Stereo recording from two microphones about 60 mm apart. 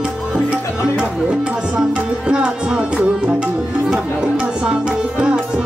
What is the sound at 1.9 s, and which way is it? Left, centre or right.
Tabla, centre.